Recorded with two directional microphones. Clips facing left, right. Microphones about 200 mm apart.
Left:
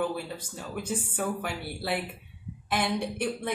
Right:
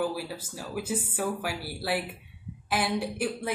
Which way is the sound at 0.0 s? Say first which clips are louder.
Even; 5° right (ahead or behind).